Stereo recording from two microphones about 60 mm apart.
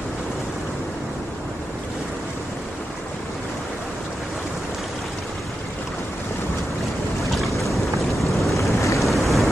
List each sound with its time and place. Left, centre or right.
7.3 s boat: centre
8.7 s boat: left
9.0 s waves: centre